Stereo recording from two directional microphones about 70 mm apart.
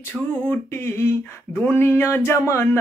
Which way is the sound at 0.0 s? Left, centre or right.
Left.